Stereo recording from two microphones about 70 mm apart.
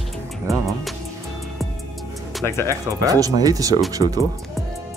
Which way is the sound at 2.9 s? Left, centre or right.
Right.